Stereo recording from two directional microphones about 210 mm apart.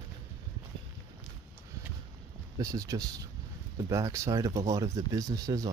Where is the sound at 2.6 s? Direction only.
15° right (ahead or behind).